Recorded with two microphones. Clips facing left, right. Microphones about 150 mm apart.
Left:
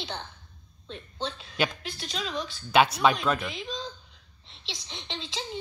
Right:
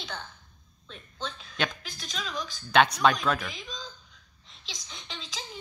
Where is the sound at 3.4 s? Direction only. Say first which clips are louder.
Left 5 dB; 30° left (ahead or behind).